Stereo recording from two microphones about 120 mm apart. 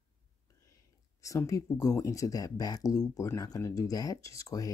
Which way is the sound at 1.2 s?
30° left (ahead or behind).